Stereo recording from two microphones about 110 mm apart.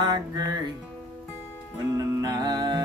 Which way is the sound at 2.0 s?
30° right (ahead or behind).